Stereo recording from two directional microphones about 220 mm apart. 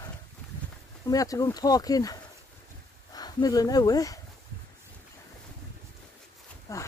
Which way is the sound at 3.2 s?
15° left (ahead or behind).